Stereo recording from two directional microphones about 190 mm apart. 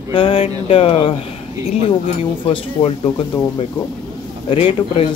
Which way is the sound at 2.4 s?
25° left (ahead or behind).